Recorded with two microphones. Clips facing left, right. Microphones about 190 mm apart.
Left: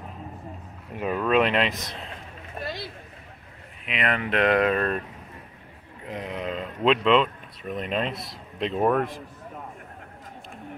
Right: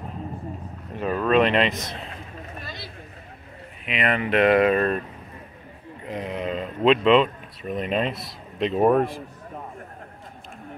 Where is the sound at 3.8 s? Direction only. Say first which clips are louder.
Right 3 dB; centre (ahead or behind).